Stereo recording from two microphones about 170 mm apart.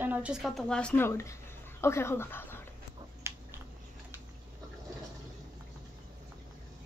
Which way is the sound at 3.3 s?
15° right (ahead or behind).